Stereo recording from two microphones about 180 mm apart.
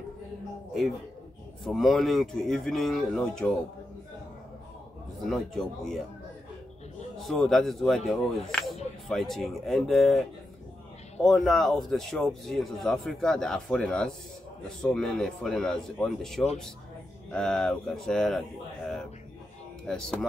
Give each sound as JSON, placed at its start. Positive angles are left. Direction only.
{"t": 1.6, "sound": "speech", "side_deg": 0}
{"t": 5.2, "sound": "speech", "side_deg": 0}
{"t": 7.2, "sound": "speech", "side_deg": 0}
{"t": 11.2, "sound": "speech", "side_deg": 0}
{"t": 19.9, "sound": "speech", "side_deg": 5}